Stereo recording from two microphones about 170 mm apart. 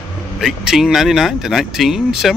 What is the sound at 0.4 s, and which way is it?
Speech, centre (ahead or behind).